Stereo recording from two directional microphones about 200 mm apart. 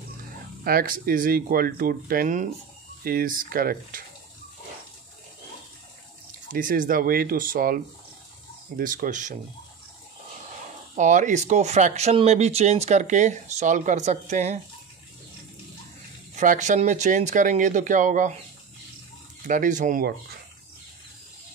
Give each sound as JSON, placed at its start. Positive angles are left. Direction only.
{"t": 0.7, "sound": "speech", "side_deg": -45}
{"t": 6.5, "sound": "speech", "side_deg": -45}
{"t": 11.0, "sound": "speech", "side_deg": -40}
{"t": 16.3, "sound": "speech", "side_deg": -35}
{"t": 19.4, "sound": "speech", "side_deg": -40}